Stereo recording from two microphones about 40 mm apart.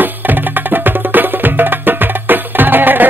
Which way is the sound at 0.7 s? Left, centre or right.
Right.